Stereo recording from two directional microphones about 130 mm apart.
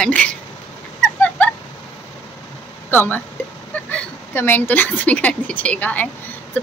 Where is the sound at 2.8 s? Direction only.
15° left (ahead or behind).